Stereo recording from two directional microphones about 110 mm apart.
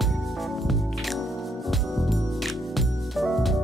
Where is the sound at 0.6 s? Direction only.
Centre (ahead or behind).